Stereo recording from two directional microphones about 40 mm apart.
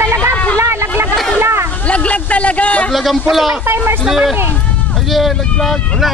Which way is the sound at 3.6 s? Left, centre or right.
Right.